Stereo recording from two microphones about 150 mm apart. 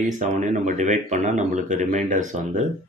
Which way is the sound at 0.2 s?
55° right (ahead or behind).